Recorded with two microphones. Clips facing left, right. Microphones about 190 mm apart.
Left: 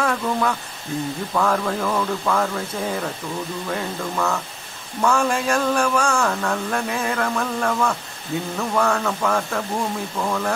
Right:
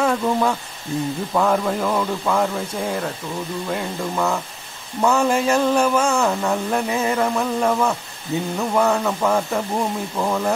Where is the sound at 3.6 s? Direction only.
10° right (ahead or behind).